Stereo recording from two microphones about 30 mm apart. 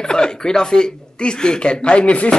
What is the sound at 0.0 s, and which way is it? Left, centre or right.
Speech, left.